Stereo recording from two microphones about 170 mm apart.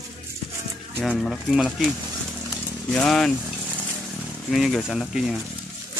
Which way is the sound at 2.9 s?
5° left (ahead or behind).